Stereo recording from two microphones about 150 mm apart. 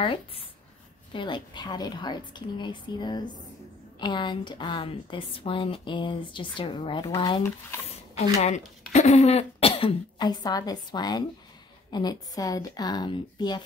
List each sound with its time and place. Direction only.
0.0 s a woman's voice: 35° left (ahead or behind)
8.4 s a woman's voice: 50° left (ahead or behind); by 13.6 s 30° left (ahead or behind)